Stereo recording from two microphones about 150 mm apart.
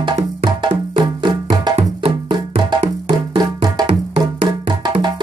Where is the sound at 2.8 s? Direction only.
30° right (ahead or behind).